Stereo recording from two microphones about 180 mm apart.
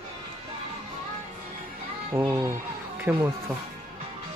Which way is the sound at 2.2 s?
20° right (ahead or behind).